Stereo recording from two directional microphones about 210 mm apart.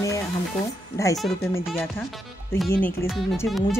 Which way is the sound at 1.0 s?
15° left (ahead or behind).